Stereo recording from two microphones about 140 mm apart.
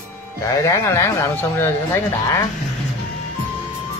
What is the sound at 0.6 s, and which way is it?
Speech, 20° left (ahead or behind).